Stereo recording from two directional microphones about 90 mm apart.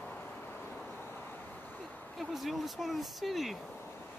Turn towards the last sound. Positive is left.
turn(degrees=0)  # may be behind; listen again after turning